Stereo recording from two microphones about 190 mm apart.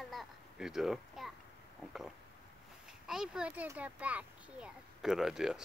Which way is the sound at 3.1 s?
5° right (ahead or behind).